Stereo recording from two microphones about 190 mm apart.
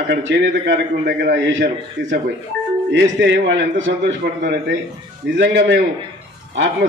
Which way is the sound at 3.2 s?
75° right (ahead or behind).